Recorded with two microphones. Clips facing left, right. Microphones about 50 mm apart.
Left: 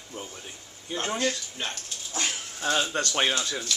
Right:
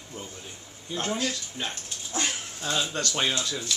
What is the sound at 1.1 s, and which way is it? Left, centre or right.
Speech, centre.